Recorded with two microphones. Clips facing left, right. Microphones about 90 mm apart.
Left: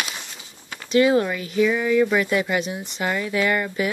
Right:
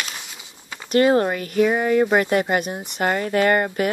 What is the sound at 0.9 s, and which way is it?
Speech, 45° right (ahead or behind).